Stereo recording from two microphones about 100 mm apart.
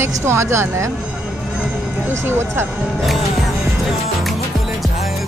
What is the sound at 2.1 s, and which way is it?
Speech, 25° right (ahead or behind).